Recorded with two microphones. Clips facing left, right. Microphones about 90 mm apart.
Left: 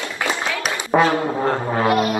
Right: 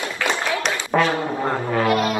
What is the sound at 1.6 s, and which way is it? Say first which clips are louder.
Music: right 1 dB; 30° left (ahead or behind).